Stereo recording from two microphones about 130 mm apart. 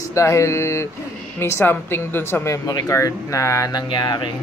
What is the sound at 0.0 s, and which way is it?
A woman's voice, 25° left (ahead or behind).